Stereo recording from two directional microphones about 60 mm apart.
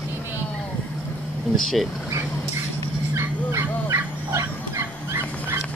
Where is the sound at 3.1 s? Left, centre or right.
Right.